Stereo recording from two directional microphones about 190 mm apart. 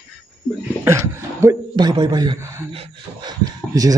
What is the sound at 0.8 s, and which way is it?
A man's voice, 15° right (ahead or behind).